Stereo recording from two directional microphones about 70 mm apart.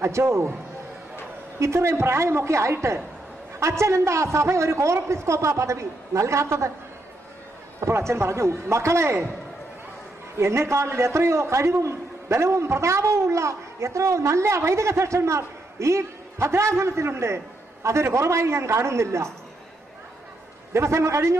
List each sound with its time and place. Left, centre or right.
0.0 s a man's voice: right
1.6 s a man's voice: right
7.8 s a man's voice: right
10.3 s a man's voice: right
20.7 s a man's voice: right